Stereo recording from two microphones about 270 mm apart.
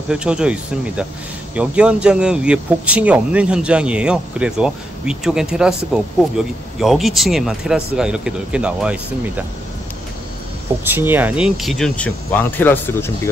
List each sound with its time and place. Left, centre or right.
0.1 s speech: centre
10.8 s speech: centre